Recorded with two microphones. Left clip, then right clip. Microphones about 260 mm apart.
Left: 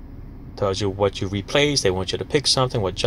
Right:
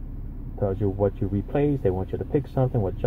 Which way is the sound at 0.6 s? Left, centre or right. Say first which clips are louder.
Left 4 dB; centre.